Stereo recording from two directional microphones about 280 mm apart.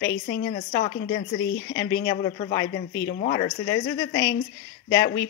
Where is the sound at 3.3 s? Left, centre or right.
Centre.